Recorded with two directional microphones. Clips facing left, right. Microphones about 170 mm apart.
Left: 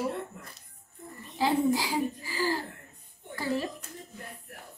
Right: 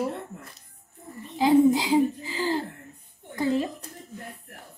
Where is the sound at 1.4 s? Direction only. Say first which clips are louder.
Right 7 dB; 20° right (ahead or behind).